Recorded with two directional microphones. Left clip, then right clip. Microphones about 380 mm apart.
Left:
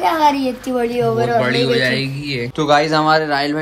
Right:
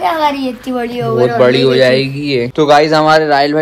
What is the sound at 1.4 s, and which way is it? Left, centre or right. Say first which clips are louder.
A man's voice: right 7 dB; centre.